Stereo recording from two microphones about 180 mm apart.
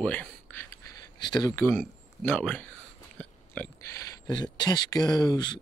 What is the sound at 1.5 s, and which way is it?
Speech, 10° left (ahead or behind).